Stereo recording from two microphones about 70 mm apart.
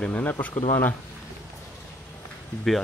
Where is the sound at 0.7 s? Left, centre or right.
Left.